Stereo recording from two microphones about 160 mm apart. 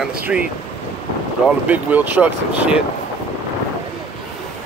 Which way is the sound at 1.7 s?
10° right (ahead or behind).